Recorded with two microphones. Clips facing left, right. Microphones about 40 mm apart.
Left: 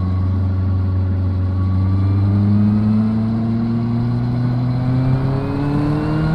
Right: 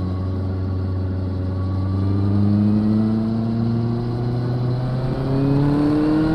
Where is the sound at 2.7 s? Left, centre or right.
Centre.